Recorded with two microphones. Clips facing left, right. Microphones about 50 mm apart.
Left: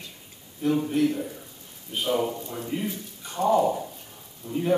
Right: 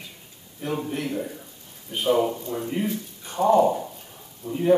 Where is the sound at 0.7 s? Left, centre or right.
Right.